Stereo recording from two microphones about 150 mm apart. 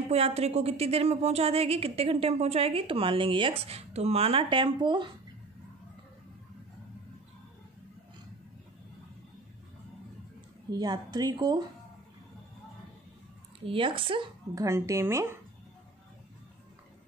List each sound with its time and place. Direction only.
0.1 s a woman's voice: 45° right (ahead or behind)
10.7 s speech: 25° right (ahead or behind)
13.7 s a woman's voice: 35° right (ahead or behind)
14.5 s speech: 20° right (ahead or behind)